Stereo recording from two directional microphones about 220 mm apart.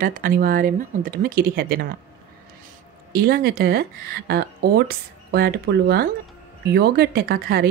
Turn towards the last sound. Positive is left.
turn(degrees=-45)  # may be behind; listen again after turning